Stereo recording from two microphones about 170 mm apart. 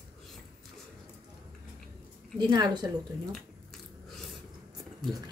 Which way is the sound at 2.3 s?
25° right (ahead or behind).